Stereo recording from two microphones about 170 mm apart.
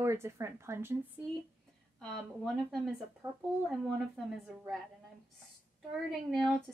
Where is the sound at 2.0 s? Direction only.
Centre (ahead or behind).